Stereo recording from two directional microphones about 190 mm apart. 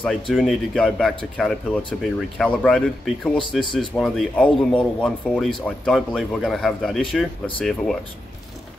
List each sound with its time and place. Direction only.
0.0 s speech: centre (ahead or behind)